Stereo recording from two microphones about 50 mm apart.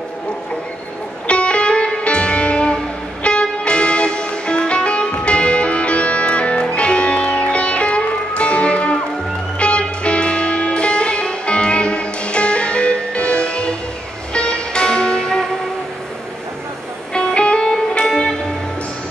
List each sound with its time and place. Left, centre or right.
1.2 s music: left
17.1 s music: centre